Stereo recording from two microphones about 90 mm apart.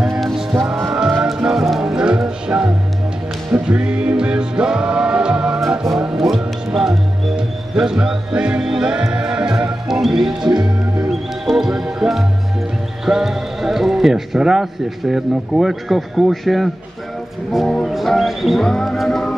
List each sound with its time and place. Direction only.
0.2 s music: centre (ahead or behind)
10.5 s music: 50° right (ahead or behind)
11.1 s music: 5° right (ahead or behind)
13.0 s speech: 5° right (ahead or behind)
17.5 s music: centre (ahead or behind)
17.8 s speech: centre (ahead or behind)